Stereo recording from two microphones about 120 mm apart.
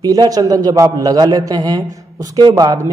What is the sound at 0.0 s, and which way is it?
A man's voice, 30° right (ahead or behind).